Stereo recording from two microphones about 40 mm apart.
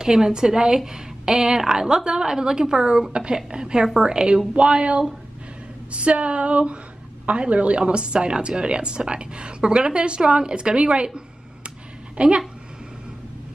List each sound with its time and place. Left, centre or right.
0.0 s a woman's voice: centre
12.2 s a woman's voice: right